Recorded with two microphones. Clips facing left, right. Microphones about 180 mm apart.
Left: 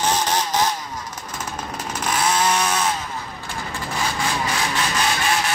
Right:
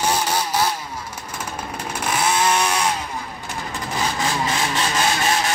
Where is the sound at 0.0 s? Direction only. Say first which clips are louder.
Even; 10° right (ahead or behind).